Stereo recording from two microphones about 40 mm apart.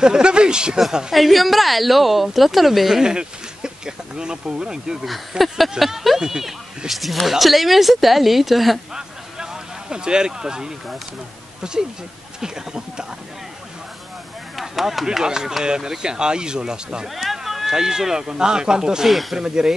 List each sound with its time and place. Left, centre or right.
0.0 s speech: right
1.1 s a woman's voice: centre
3.0 s speech: centre
5.8 s speech: centre
6.9 s a woman's voice: centre
8.9 s a sound: centre
11.6 s speech: centre
14.5 s chop: centre
15.0 s speech: centre
17.1 s a sound: centre
17.7 s speech: centre